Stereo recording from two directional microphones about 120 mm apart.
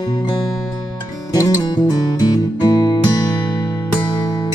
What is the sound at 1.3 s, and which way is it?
Music, 35° left (ahead or behind).